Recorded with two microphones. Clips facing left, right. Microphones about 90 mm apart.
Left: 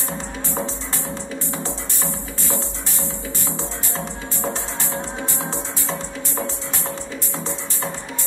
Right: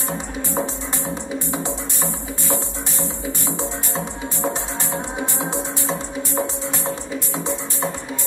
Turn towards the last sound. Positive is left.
turn(degrees=-15)  # may be behind; listen again after turning